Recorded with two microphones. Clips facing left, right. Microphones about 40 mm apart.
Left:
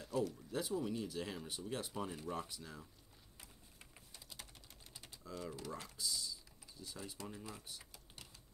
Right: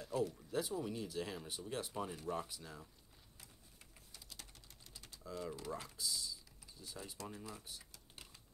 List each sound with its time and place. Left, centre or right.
0.0 s speech: centre
4.1 s typing: centre
5.2 s speech: centre